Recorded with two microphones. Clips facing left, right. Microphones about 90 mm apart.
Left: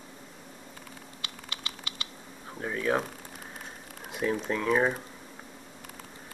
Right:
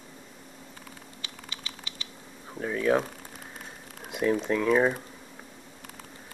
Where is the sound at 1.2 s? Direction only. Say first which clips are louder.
Left 3 dB; 70° left (ahead or behind).